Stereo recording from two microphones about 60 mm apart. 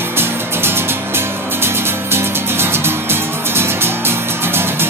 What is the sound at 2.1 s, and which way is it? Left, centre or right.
Music, right.